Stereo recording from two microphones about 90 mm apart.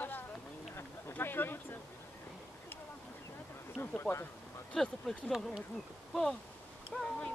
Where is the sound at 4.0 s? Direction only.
25° left (ahead or behind).